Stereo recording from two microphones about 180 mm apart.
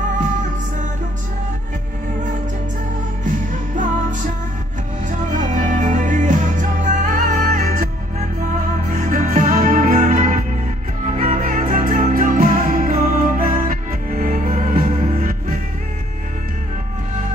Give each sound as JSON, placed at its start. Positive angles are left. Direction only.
{"t": 5.4, "sound": "music", "side_deg": -45}